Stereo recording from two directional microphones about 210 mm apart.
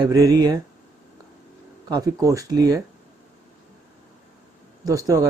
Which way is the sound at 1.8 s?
20° right (ahead or behind).